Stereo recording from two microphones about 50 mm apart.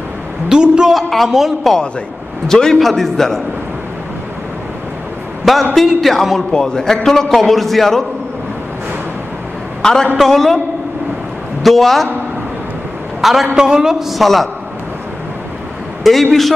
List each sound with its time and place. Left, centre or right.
0.5 s a woman's voice: centre
0.9 s a man's voice: centre
2.4 s a man's voice: centre
5.4 s a man's voice: centre
6.5 s a man's voice: centre
9.8 s a sound: centre
10.1 s a man's voice: centre
11.6 s a man's voice: centre
13.2 s a man's voice: centre
16.0 s a man's voice: centre